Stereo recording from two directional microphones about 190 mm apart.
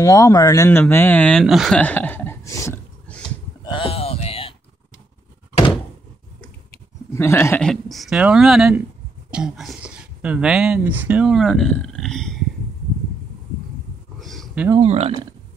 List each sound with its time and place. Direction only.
0.0 s speech: 20° left (ahead or behind)
3.6 s a sound: 25° left (ahead or behind)
7.2 s speech: 15° left (ahead or behind)
14.2 s roaring cats: centre (ahead or behind)
14.8 s speech: 35° right (ahead or behind)